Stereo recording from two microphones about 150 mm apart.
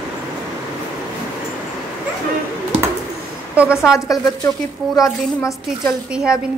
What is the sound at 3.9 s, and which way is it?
A woman's voice, 20° left (ahead or behind).